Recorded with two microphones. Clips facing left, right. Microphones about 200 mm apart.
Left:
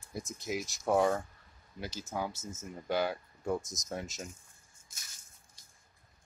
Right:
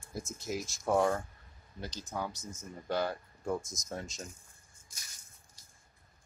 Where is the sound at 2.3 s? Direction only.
25° left (ahead or behind).